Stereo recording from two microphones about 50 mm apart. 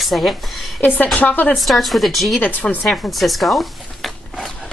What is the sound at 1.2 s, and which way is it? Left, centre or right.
Speech, left.